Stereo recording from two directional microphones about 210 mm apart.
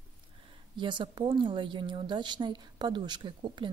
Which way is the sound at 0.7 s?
20° right (ahead or behind).